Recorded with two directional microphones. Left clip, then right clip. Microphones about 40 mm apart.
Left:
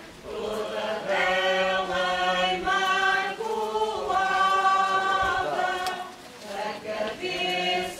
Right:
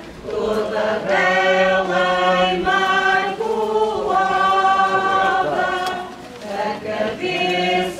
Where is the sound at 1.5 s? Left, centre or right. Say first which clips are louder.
Right 9 dB; left.